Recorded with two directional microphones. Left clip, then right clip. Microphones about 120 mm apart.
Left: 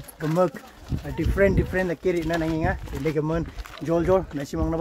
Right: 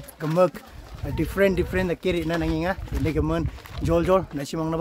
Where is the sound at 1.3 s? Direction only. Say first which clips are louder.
Even; 15° right (ahead or behind).